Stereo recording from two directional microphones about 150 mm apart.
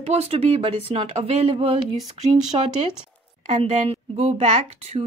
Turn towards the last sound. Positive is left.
turn(degrees=-45)  # may be behind; listen again after turning